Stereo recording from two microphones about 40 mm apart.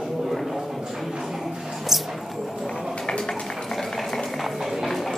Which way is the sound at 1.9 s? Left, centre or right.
Centre.